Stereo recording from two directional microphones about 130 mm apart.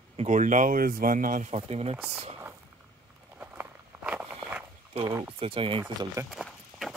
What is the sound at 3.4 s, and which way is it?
Walk, 10° right (ahead or behind).